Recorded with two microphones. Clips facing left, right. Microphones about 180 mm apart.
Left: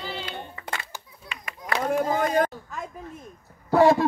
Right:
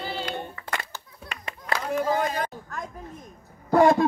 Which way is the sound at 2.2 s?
50° left (ahead or behind).